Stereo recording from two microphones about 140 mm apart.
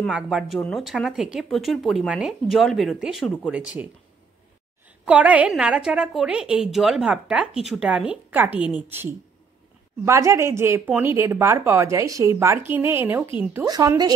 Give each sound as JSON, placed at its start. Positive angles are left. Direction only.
{"t": 0.0, "sound": "a woman's voice", "side_deg": -5}
{"t": 13.7, "sound": "a woman's voice", "side_deg": -25}